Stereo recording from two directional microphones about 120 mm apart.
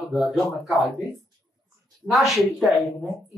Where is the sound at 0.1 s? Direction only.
Centre (ahead or behind).